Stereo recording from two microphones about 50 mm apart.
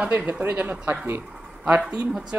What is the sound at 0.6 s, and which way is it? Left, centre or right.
Speech, right.